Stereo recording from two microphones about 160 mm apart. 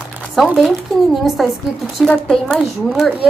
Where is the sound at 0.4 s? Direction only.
Centre (ahead or behind).